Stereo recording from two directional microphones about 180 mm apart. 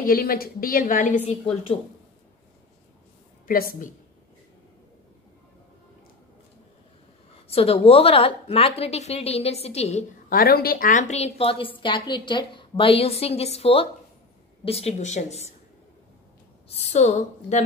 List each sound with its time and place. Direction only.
0.0 s a woman's voice: 55° left (ahead or behind)
1.2 s a woman's voice: 30° left (ahead or behind)
3.4 s a woman's voice: 55° left (ahead or behind)
7.5 s a woman's voice: 35° left (ahead or behind)
10.3 s a woman's voice: 55° left (ahead or behind); by 15.5 s 40° left (ahead or behind)
16.6 s a woman's voice: 35° left (ahead or behind)